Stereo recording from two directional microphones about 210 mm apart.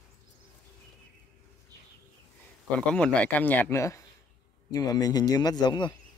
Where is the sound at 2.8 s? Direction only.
5° left (ahead or behind); by 5.9 s 20° left (ahead or behind).